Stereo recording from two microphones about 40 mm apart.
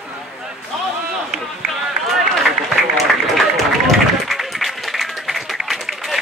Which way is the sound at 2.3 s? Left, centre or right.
Centre.